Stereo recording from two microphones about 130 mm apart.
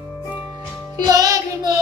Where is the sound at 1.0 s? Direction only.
30° right (ahead or behind).